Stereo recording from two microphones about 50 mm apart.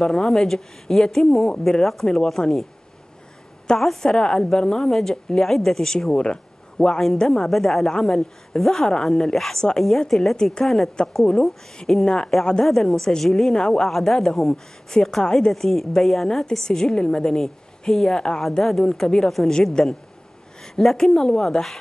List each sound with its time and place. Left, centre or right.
0.0 s speech: centre
3.7 s speech: centre
7.4 s a woman's voice: centre
13.8 s a woman's voice: centre
16.6 s speech: centre